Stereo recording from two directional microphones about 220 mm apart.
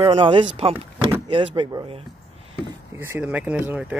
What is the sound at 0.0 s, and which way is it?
Speech, 25° right (ahead or behind).